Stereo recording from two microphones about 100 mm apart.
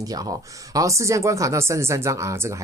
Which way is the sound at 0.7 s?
30° right (ahead or behind).